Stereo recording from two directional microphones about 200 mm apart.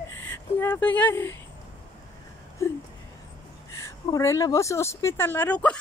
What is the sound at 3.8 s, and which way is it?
Speech, 15° left (ahead or behind).